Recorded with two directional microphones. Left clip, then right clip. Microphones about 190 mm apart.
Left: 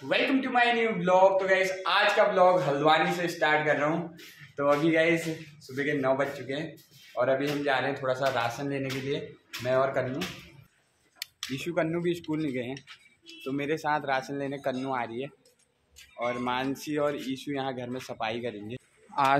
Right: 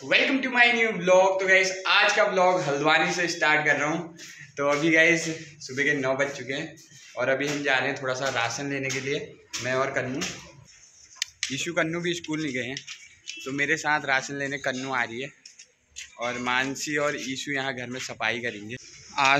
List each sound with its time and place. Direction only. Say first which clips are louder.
0.1 s a man's voice: right 3 dB; 5° left (ahead or behind)
11.1 s a man's voice: right 6 dB; 5° left (ahead or behind)
19.2 s speech: right 3 dB; 20° left (ahead or behind)